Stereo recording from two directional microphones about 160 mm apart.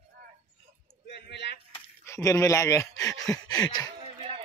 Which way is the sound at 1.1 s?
90° left.